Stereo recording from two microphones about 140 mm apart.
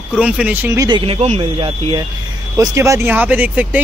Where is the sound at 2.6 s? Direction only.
20° right (ahead or behind).